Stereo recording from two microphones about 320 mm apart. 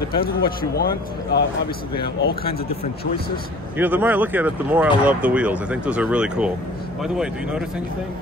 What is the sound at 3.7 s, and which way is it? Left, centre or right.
Speech, centre.